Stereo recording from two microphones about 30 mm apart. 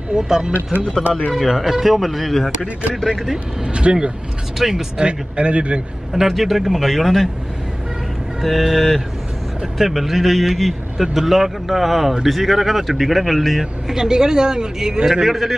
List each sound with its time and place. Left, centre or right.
0.1 s a man's voice: right
1.5 s a man's voice: centre
3.6 s a man's voice: right
4.6 s speech: centre
4.9 s speech: right
6.1 s a man's voice: centre
8.4 s a man's voice: centre
13.6 s a man's voice: centre
15.2 s a man's voice: centre